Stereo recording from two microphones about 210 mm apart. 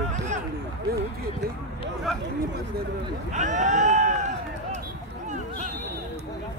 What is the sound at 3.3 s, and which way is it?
Speech, 35° right (ahead or behind).